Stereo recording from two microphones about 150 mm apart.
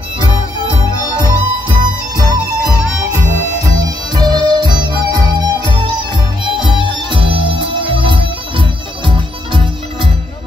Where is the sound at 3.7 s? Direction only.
25° right (ahead or behind).